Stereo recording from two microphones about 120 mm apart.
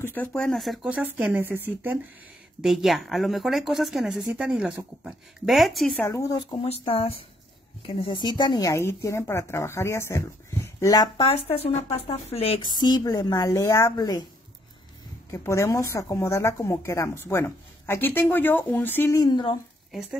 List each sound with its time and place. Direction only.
0.0 s speech: 15° left (ahead or behind)
1.1 s speech: 15° right (ahead or behind)
2.6 s a woman's voice: centre (ahead or behind)
5.9 s speech: 25° left (ahead or behind)
6.8 s speech: 50° left (ahead or behind); by 11.1 s 30° left (ahead or behind)
11.1 s speech: 50° left (ahead or behind)
12.7 s a woman's voice: 35° left (ahead or behind)
15.3 s speech: 25° left (ahead or behind)
19.3 s a woman's voice: 40° left (ahead or behind)